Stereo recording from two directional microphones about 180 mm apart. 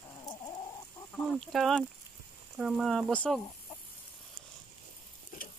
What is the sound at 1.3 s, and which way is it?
Speech, 5° left (ahead or behind).